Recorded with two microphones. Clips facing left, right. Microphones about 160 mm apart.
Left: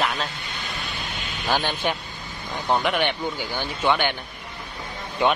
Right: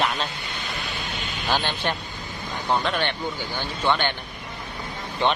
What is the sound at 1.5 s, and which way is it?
A man's voice, 10° left (ahead or behind).